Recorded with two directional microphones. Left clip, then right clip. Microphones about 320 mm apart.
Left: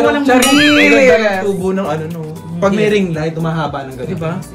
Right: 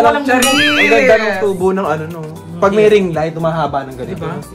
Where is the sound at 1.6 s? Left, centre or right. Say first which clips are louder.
Right 2 dB; right.